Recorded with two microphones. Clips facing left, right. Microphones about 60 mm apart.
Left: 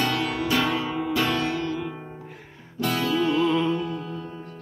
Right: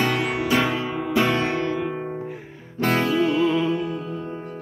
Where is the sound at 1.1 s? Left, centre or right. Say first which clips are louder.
Right 5 dB; right.